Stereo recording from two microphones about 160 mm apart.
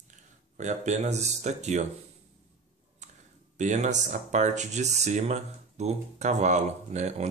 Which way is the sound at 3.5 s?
50° right (ahead or behind).